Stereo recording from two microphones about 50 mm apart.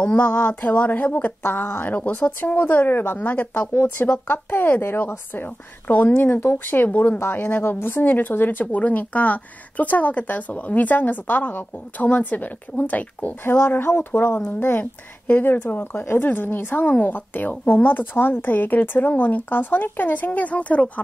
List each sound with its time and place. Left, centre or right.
0.2 s speech: left
2.0 s speech: left
3.7 s speech: left
13.4 s speech: left